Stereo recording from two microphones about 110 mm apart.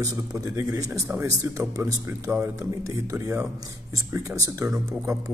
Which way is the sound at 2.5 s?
30° right (ahead or behind).